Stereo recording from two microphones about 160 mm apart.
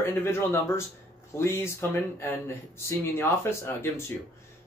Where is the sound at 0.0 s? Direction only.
15° left (ahead or behind).